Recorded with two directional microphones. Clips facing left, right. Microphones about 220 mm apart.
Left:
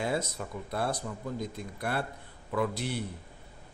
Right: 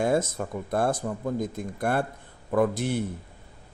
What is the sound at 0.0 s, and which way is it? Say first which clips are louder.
Speech: right 7 dB; 50° right (ahead or behind).